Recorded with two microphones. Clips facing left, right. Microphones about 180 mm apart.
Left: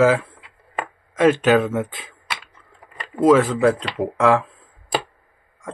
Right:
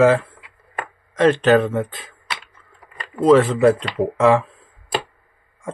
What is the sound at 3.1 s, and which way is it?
Speech, 30° left (ahead or behind).